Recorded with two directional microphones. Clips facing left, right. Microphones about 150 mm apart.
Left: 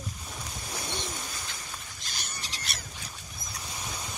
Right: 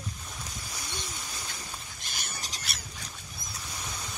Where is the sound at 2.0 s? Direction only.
50° right (ahead or behind).